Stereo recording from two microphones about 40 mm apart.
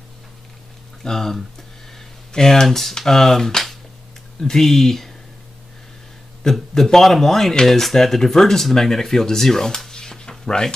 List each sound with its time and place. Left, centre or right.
1.0 s speech: centre
2.0 s a sound: centre
3.0 s speech: centre
6.7 s speech: centre
9.8 s dog: centre
10.4 s speech: centre